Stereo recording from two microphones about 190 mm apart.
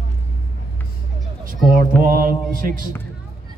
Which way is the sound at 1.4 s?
45° right (ahead or behind).